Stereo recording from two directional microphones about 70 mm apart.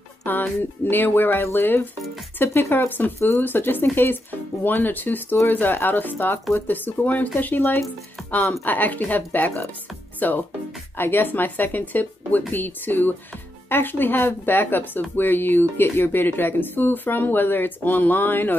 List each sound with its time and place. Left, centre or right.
0.2 s speech: left